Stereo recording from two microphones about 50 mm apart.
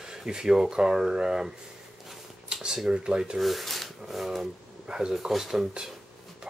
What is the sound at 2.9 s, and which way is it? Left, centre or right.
Speech, centre.